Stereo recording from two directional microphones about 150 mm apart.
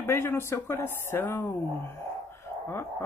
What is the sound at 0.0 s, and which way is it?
Speech, 15° left (ahead or behind).